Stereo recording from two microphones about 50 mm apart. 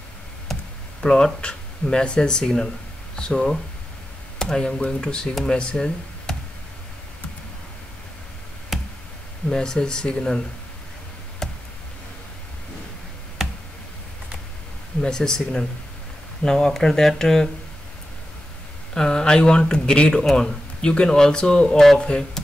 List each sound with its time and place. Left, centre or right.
0.5 s a sound: centre
1.0 s speech: centre
8.7 s a sound: centre
9.5 s speech: centre
11.4 s tick: centre
15.0 s speech: centre
18.9 s speech: centre